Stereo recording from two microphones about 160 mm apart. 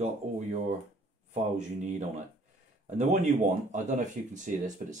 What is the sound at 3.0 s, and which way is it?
Speech, 50° right (ahead or behind).